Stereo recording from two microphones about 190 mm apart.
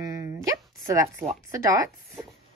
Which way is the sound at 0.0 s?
15° right (ahead or behind).